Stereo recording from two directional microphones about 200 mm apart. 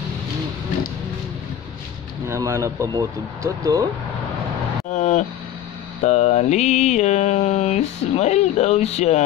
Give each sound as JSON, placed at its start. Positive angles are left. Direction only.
{"t": 2.2, "sound": "speech", "side_deg": -15}
{"t": 4.9, "sound": "mantra", "side_deg": 35}